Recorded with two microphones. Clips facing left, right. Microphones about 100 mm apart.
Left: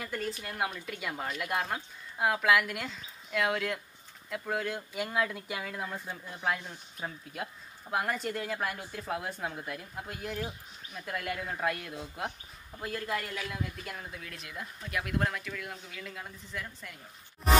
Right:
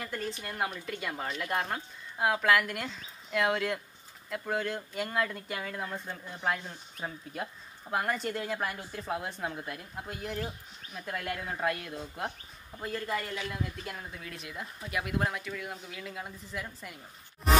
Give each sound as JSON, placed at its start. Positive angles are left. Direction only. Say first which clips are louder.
{"t": 0.0, "sound": "a man's voice", "louder": "even", "side_deg": 0}